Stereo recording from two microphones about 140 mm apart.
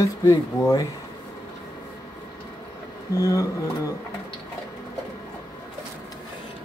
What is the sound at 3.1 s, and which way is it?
Speech, 25° left (ahead or behind).